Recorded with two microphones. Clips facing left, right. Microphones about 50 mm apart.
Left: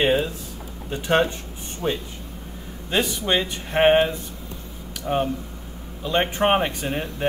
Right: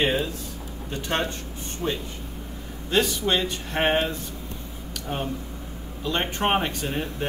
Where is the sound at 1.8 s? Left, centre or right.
Left.